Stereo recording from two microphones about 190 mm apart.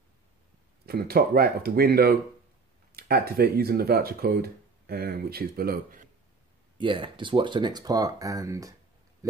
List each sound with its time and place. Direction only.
0.8 s speech: 55° right (ahead or behind)
6.8 s speech: 25° right (ahead or behind)